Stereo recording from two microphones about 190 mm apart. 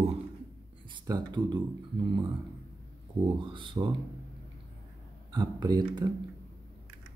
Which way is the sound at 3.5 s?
25° right (ahead or behind).